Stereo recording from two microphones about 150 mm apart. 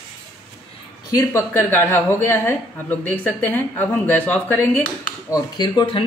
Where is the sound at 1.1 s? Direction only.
20° left (ahead or behind).